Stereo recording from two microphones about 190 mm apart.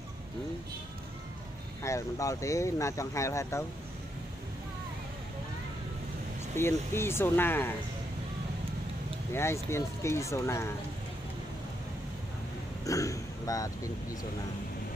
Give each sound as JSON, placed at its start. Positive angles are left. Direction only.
{"t": 1.8, "sound": "speech", "side_deg": 15}
{"t": 6.5, "sound": "speech", "side_deg": 10}
{"t": 9.3, "sound": "speech", "side_deg": 15}
{"t": 12.8, "sound": "speech", "side_deg": 15}